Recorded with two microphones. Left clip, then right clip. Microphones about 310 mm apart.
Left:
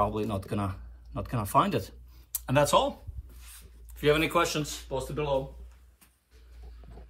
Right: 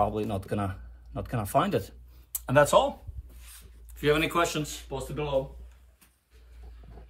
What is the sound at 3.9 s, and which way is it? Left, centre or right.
Speech, centre.